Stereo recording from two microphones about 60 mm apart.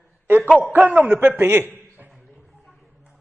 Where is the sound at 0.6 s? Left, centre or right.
Right.